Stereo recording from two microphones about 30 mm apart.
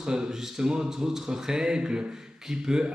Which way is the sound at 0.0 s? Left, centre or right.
Right.